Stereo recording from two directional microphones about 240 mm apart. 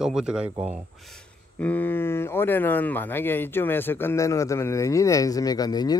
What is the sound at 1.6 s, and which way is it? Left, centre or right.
Speech, centre.